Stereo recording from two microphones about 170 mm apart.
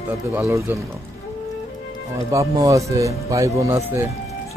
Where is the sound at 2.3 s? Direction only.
20° right (ahead or behind).